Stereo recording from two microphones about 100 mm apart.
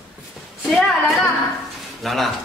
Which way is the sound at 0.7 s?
Centre (ahead or behind).